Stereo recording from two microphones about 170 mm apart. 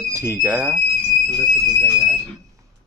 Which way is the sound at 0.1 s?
15° right (ahead or behind).